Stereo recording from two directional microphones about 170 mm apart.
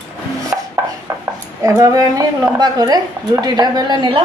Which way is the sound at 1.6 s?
20° right (ahead or behind).